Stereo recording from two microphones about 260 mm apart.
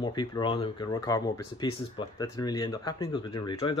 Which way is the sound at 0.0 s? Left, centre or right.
Centre.